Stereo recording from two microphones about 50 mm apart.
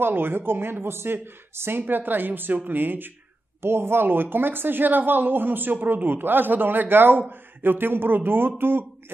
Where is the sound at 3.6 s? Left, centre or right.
Right.